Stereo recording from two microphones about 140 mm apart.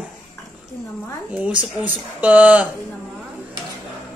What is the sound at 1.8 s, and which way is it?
Speech, 10° right (ahead or behind).